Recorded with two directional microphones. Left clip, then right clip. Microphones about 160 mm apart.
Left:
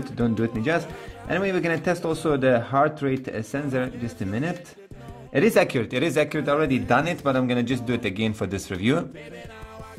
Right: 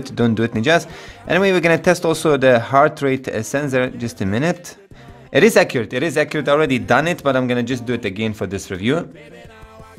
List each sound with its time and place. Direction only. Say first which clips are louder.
0.0 s a man's voice: right 7 dB; 40° right (ahead or behind); by 9.0 s 20° right (ahead or behind)